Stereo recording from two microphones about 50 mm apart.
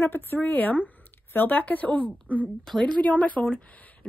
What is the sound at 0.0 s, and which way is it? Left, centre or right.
Speech, left.